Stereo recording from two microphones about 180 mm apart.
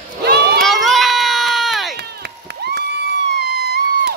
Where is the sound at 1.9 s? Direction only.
65° right (ahead or behind).